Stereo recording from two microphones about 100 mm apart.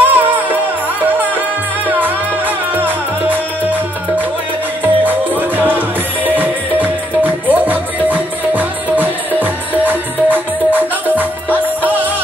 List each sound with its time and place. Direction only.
0.0 s music: 20° right (ahead or behind)
4.8 s music: 20° right (ahead or behind)